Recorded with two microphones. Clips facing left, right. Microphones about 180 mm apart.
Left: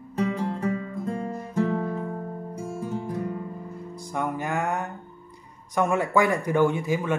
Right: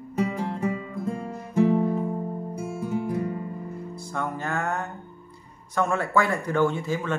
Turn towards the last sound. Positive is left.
turn(degrees=15)  # may be behind; listen again after turning